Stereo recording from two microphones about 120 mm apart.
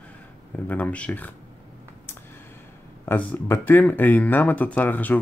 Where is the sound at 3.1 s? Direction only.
20° left (ahead or behind).